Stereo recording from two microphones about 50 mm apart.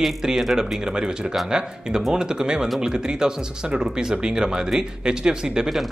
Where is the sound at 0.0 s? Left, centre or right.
Centre.